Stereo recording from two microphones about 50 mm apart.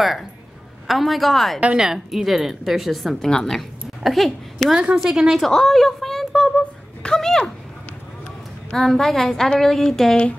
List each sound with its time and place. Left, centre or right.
0.8 s a woman's voice: centre
1.8 s a woman's voice: centre
3.3 s a woman's voice: centre
5.4 s a sound: centre
8.7 s a woman's voice: centre